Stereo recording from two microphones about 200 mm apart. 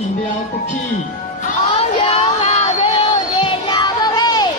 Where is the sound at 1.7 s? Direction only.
30° left (ahead or behind).